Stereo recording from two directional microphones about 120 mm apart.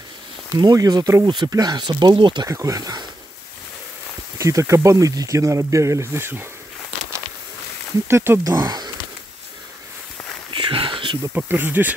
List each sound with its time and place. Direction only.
0.6 s speech: 30° right (ahead or behind)
2.4 s speech: 25° right (ahead or behind)
4.4 s speech: 25° right (ahead or behind)
8.1 s speech: 20° right (ahead or behind)
8.5 s speech: 35° right (ahead or behind)
10.5 s a sound: 45° right (ahead or behind)
11.3 s speech: 15° right (ahead or behind)